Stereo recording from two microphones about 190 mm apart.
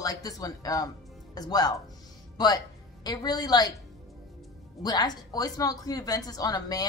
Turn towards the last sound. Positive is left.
turn(degrees=20)  # may be behind; listen again after turning